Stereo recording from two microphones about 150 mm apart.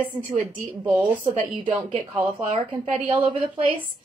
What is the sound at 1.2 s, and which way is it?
Speech, 30° right (ahead or behind).